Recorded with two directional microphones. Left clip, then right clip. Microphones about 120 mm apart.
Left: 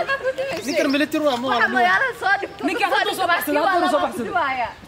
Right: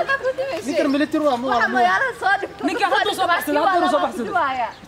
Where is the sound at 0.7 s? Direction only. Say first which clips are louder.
Even; 15° left (ahead or behind).